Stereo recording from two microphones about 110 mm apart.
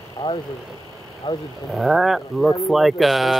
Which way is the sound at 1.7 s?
5° right (ahead or behind).